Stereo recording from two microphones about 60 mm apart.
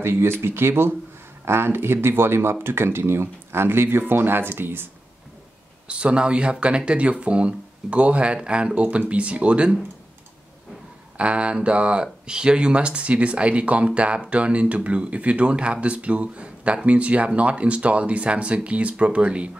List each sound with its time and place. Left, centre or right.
0.0 s speech: right
5.9 s speech: centre
11.1 s speech: centre